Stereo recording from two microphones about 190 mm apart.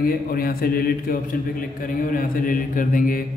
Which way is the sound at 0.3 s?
50° left (ahead or behind).